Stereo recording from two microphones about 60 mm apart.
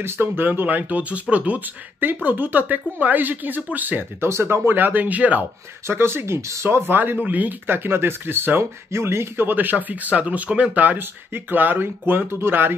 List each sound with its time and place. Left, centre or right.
0.0 s speech: right
4.2 s speech: right
5.9 s speech: right
6.9 s speech: right